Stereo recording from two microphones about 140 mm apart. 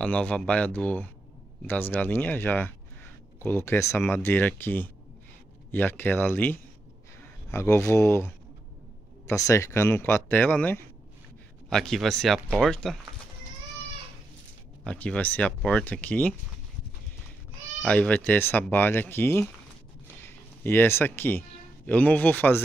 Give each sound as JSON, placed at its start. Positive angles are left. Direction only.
{"t": 0.0, "sound": "speech", "side_deg": 10}
{"t": 9.3, "sound": "speech", "side_deg": 20}
{"t": 14.9, "sound": "speech", "side_deg": 10}
{"t": 17.8, "sound": "speech", "side_deg": 10}